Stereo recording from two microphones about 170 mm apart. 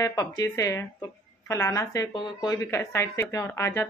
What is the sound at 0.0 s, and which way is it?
Speech, 20° left (ahead or behind).